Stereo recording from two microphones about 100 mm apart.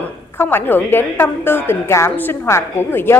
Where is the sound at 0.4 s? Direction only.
20° left (ahead or behind).